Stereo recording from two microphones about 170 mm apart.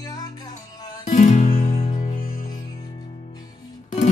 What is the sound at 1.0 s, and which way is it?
Music, 45° left (ahead or behind).